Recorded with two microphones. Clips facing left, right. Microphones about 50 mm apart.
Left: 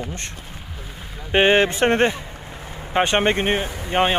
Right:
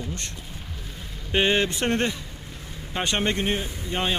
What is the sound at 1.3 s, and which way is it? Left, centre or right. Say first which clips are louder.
A man's voice: left 6 dB; left.